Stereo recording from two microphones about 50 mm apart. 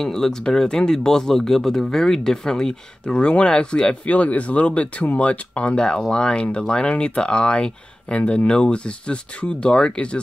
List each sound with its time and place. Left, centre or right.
0.0 s speech: centre